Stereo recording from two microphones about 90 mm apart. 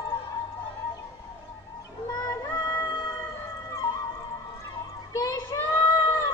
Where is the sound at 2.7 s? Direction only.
25° left (ahead or behind).